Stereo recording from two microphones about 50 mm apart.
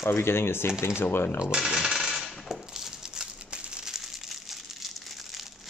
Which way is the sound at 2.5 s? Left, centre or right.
Centre.